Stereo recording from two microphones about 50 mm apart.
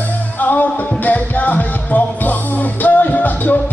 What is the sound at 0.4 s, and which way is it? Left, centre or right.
Music, left.